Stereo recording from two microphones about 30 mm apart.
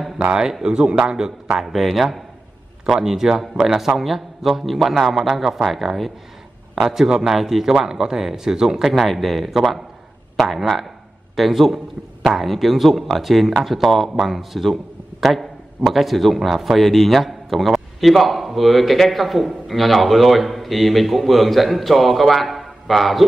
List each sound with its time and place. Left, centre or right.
0.7 s a man's voice: right
1.6 s a man's voice: centre
2.9 s a man's voice: centre
6.7 s a man's voice: centre
8.9 s a man's voice: centre